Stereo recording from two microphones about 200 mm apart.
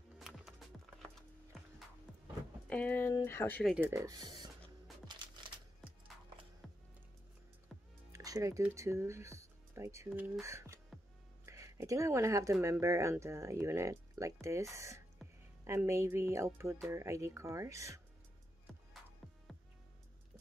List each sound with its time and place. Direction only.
0.2 s music: centre (ahead or behind)
2.7 s speech: 10° left (ahead or behind)
3.7 s speech: 10° right (ahead or behind)
5.1 s music: 20° right (ahead or behind)
6.6 s music: centre (ahead or behind)
7.6 s music: 15° right (ahead or behind)
10.0 s speech: 5° right (ahead or behind)